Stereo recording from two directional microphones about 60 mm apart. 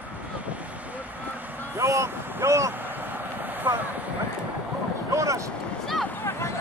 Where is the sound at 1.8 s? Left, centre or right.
Right.